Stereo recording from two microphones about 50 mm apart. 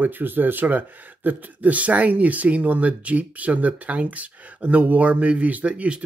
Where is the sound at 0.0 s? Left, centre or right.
Right.